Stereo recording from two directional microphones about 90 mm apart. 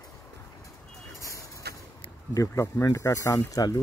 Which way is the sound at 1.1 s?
35° left (ahead or behind).